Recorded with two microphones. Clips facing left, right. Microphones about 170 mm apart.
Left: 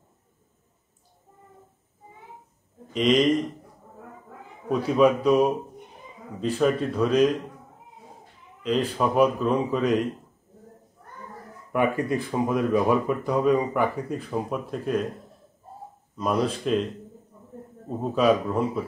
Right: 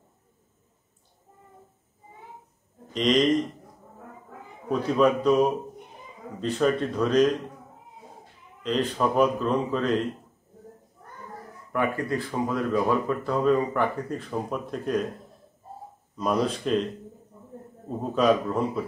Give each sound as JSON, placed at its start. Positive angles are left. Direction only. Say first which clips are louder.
{"t": 2.9, "sound": "speech", "louder": "left 1 dB", "side_deg": 5}
{"t": 4.6, "sound": "speech", "louder": "left 2 dB", "side_deg": 10}
{"t": 8.6, "sound": "speech", "louder": "left 1 dB", "side_deg": 10}
{"t": 11.7, "sound": "speech", "louder": "left 3 dB", "side_deg": 20}
{"t": 16.2, "sound": "speech", "louder": "even", "side_deg": 0}
{"t": 18.1, "sound": "speech", "louder": "left 1 dB", "side_deg": 5}